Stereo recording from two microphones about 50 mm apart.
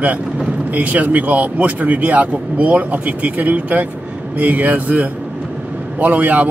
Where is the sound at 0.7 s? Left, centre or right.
Right.